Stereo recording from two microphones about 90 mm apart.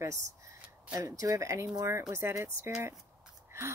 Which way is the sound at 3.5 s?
30° right (ahead or behind).